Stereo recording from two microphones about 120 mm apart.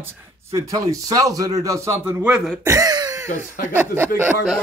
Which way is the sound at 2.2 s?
5° right (ahead or behind).